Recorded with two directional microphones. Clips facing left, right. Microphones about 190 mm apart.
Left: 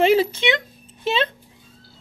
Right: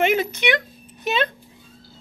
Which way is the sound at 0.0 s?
30° left (ahead or behind).